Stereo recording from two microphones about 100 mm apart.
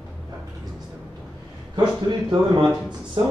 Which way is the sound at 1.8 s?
50° right (ahead or behind).